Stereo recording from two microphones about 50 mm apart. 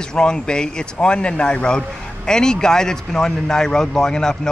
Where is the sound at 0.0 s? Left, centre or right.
Centre.